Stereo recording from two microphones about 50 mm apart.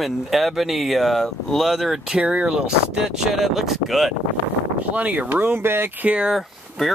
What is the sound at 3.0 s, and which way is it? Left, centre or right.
Speech, centre.